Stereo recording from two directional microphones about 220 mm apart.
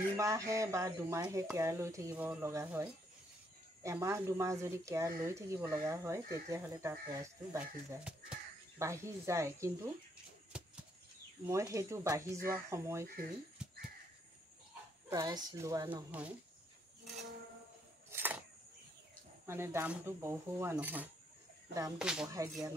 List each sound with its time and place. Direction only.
0.2 s speech: 15° right (ahead or behind)
10.5 s a sound: 5° right (ahead or behind)
11.4 s speech: 15° right (ahead or behind)
13.0 s speech: 40° right (ahead or behind)
13.6 s wheeze: 5° right (ahead or behind)
15.0 s speech: 15° right (ahead or behind)
18.1 s a sound: 10° right (ahead or behind)
19.4 s speech: 10° right (ahead or behind)
22.3 s speech: 15° right (ahead or behind)